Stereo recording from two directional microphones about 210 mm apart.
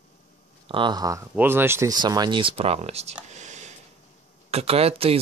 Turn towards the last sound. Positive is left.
turn(degrees=-30)  # may be behind; listen again after turning